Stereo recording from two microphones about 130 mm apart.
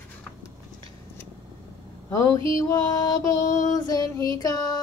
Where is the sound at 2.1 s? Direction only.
25° left (ahead or behind).